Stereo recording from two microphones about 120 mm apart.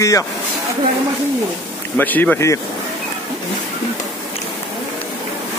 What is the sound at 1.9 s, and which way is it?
Speech, 15° left (ahead or behind).